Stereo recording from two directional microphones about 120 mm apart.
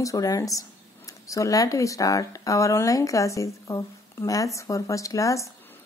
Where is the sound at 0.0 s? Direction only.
30° left (ahead or behind).